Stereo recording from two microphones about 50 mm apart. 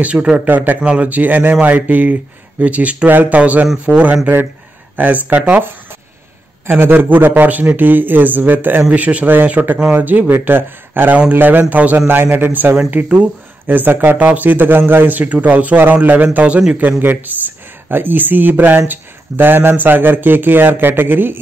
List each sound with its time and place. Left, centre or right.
0.0 s speech: right
0.5 s a man's voice: right
0.7 s a man's voice: right
3.1 s a man's voice: right
3.3 s a man's voice: right
6.7 s a man's voice: right
17.0 s a man's voice: right